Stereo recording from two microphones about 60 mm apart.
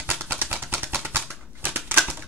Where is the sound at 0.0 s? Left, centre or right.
Right.